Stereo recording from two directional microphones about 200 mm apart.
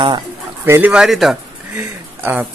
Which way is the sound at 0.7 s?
10° right (ahead or behind).